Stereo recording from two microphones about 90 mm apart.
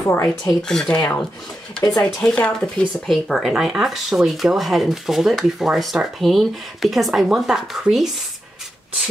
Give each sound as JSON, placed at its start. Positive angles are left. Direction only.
{"t": 0.0, "sound": "speech", "side_deg": 30}
{"t": 0.6, "sound": "speech", "side_deg": 10}
{"t": 1.8, "sound": "speech", "side_deg": 45}
{"t": 2.3, "sound": "speech", "side_deg": 10}
{"t": 3.1, "sound": "speech", "side_deg": 0}